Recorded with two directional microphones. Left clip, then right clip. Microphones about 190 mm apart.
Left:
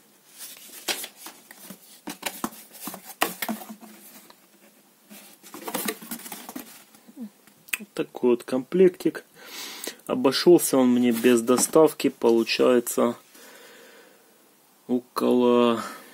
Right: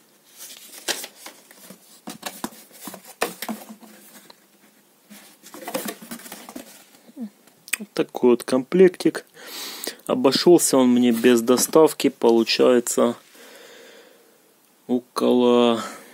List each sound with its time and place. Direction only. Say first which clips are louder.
5.4 s patter: right 2 dB; 25° right (ahead or behind)
7.7 s speech: right 5 dB; 20° right (ahead or behind)